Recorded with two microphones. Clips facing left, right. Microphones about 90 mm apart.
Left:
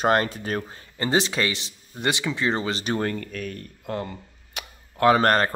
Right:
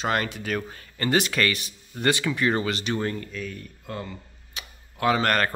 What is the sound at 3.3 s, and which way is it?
Speech, 60° left (ahead or behind).